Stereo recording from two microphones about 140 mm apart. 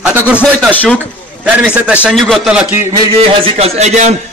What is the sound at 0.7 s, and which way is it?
Speech, 10° left (ahead or behind).